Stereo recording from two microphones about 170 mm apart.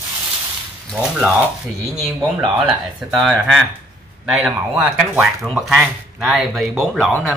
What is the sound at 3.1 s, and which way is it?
Speech, centre (ahead or behind).